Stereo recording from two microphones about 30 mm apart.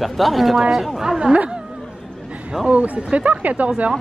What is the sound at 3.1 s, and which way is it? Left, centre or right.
Speech, right.